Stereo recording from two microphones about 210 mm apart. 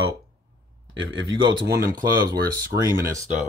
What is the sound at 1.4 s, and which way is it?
Speech, 15° right (ahead or behind).